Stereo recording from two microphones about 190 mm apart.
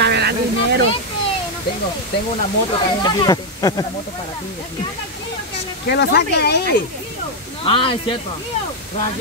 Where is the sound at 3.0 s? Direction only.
20° left (ahead or behind).